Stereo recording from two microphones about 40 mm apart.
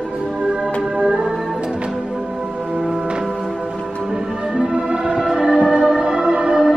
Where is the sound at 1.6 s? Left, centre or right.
Right.